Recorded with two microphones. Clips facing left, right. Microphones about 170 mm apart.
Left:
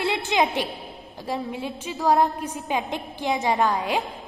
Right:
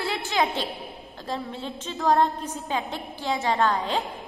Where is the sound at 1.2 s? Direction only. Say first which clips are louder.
Left 3 dB; 10° left (ahead or behind).